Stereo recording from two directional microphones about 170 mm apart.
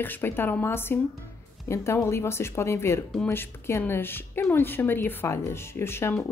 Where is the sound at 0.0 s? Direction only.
10° left (ahead or behind).